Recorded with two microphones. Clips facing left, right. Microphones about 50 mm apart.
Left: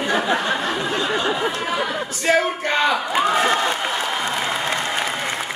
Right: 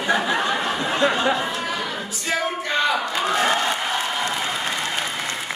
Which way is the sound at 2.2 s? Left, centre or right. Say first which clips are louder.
Left 6 dB; left.